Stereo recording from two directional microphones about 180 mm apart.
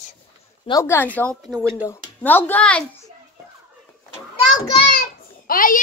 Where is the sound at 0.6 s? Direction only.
15° left (ahead or behind).